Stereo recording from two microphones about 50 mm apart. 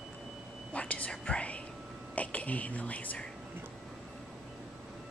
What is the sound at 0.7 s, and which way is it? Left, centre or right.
Whispering, left.